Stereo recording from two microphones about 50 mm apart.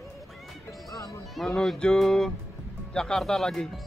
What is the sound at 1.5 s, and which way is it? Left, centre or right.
Speech, centre.